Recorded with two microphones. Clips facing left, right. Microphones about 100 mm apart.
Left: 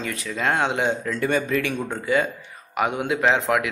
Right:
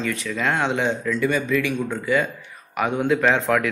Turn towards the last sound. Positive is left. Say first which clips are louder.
# right 1 dB
turn(degrees=20)  # may be behind; listen again after turning